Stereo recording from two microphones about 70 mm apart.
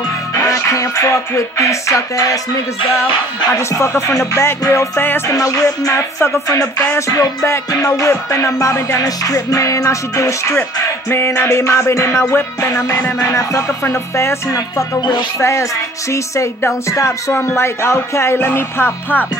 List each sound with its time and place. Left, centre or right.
0.4 s music: left
3.5 s music: left
4.9 s speech: left
5.3 s music: left
5.9 s speech: left
7.0 s music: left
7.4 s music: left
11.1 s speech: left
13.2 s music: left
16.1 s music: left
17.3 s speech: left